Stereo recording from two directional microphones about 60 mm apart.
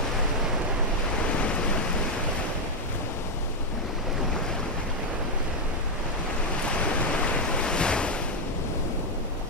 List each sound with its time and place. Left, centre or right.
1.4 s waves: centre
7.5 s waves: centre